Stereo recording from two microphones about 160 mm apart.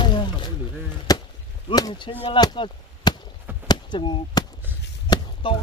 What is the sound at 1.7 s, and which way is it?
Speech, 25° left (ahead or behind).